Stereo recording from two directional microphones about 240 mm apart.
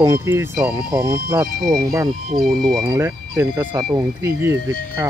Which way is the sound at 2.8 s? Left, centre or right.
Centre.